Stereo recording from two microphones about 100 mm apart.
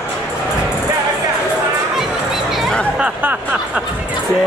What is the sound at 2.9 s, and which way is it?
Speech, 15° right (ahead or behind).